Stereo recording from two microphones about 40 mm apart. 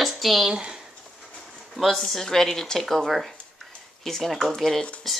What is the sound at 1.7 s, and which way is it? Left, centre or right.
Speech, centre.